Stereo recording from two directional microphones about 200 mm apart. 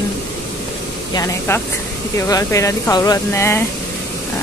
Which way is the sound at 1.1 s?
15° left (ahead or behind).